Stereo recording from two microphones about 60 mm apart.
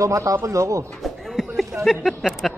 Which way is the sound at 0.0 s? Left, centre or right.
Right.